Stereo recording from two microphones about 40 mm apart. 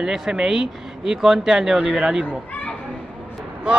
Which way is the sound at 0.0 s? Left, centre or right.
Centre.